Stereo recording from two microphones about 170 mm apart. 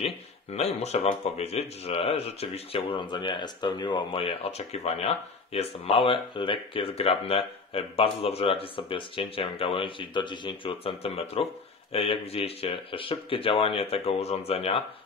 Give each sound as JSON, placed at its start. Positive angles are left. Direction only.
{"t": 0.0, "sound": "speech", "side_deg": 40}